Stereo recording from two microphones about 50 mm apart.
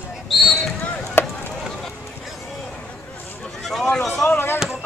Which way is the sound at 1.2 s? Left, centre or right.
Left.